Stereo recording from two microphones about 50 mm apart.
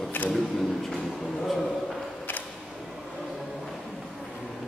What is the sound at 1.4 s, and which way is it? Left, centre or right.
Speech, centre.